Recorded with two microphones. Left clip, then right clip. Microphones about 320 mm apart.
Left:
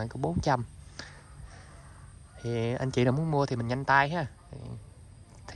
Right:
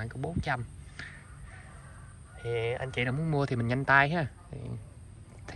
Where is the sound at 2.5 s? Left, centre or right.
Left.